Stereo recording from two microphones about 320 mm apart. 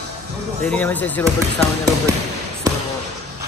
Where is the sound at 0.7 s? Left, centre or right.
Centre.